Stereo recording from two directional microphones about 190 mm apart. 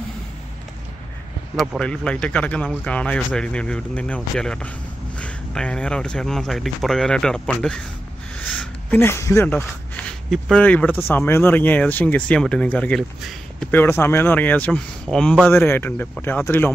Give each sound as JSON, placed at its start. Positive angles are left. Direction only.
{"t": 1.6, "sound": "speech", "side_deg": 5}